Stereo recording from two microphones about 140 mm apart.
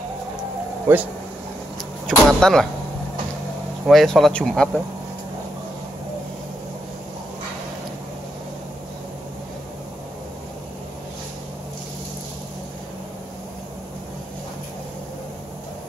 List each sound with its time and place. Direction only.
0.9 s speech: 15° right (ahead or behind)
2.0 s speech: 5° left (ahead or behind)
3.8 s speech: centre (ahead or behind)